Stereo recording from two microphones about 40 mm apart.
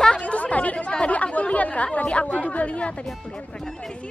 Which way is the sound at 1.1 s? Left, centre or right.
Left.